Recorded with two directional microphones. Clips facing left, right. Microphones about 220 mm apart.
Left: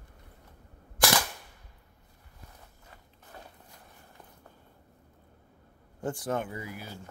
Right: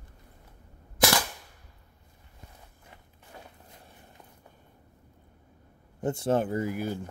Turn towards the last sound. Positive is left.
turn(degrees=-50)  # may be behind; listen again after turning